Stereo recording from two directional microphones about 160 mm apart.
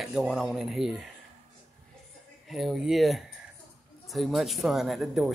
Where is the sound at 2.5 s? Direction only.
Centre (ahead or behind).